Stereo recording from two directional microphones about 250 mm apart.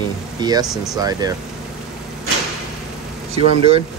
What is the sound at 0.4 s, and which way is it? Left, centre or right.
Speech, centre.